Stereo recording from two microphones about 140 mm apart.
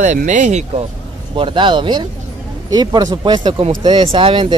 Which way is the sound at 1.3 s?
35° right (ahead or behind).